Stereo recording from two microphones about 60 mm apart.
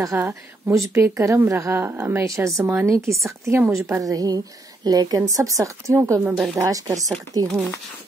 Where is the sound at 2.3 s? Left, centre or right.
Right.